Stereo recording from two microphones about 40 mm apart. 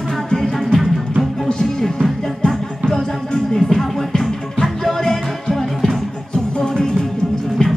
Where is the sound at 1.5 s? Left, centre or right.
Centre.